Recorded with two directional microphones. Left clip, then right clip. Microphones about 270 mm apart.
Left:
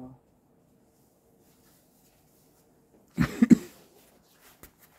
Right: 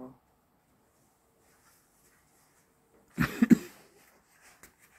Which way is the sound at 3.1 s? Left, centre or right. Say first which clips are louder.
Left 3 dB; centre.